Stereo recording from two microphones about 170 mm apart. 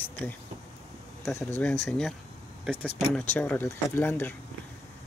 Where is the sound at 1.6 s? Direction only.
5° left (ahead or behind).